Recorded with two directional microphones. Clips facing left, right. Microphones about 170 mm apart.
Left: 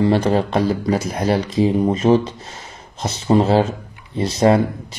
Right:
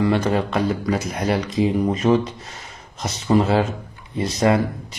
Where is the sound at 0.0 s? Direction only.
30° left (ahead or behind).